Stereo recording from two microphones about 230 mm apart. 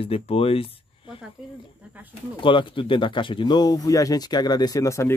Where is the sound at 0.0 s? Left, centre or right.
Left.